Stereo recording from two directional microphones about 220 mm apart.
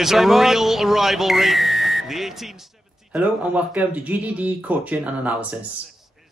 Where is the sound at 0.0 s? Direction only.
Centre (ahead or behind).